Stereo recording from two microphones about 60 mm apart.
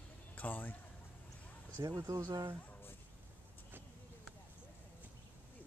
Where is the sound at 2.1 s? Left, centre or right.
Right.